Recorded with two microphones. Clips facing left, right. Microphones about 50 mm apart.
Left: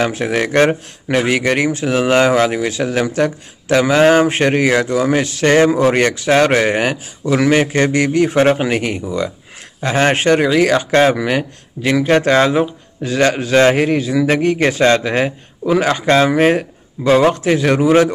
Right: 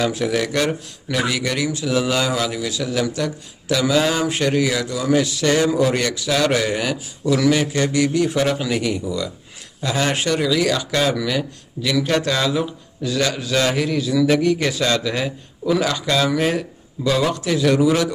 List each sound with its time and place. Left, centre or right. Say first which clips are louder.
0.0 s speech: left 3 dB; left